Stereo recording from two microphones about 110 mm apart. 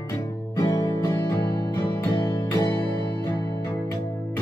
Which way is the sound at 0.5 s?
30° left (ahead or behind).